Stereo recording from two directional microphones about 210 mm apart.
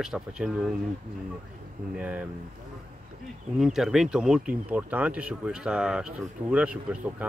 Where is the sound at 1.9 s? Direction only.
5° right (ahead or behind).